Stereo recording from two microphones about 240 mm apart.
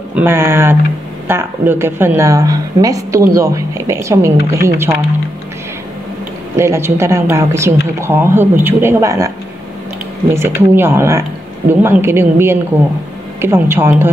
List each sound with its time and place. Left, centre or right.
0.1 s a woman's voice: centre
6.5 s a woman's voice: centre
10.3 s a woman's voice: centre